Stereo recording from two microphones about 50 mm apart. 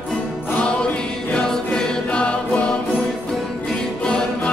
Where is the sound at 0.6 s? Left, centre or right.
Left.